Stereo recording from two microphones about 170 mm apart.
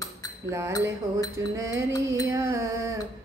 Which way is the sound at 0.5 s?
15° right (ahead or behind).